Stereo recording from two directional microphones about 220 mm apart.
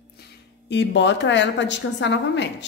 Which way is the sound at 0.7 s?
55° left (ahead or behind).